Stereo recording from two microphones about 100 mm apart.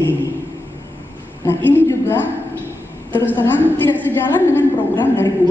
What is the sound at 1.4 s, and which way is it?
Speech, 25° left (ahead or behind).